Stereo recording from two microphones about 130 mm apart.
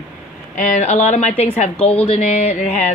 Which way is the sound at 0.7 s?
60° left (ahead or behind).